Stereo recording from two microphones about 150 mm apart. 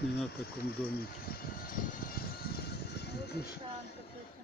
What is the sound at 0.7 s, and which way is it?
Vehicle, 90° left.